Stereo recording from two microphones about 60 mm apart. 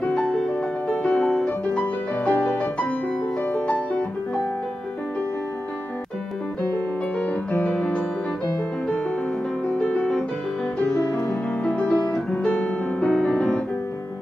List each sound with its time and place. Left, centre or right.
0.0 s music: centre
7.2 s music: left
9.7 s music: centre